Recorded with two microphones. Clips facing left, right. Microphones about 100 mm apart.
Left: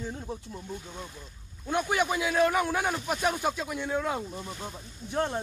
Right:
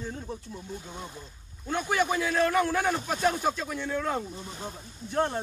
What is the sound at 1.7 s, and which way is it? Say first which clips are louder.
A man's voice: even; 15° left (ahead or behind).